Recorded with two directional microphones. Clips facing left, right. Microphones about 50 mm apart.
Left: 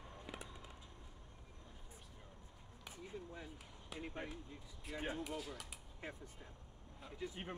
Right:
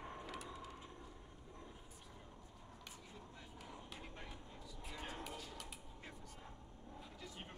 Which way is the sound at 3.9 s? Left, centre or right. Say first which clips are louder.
Left 6 dB; left.